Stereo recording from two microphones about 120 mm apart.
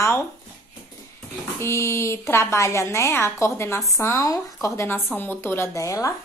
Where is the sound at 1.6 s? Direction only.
20° left (ahead or behind).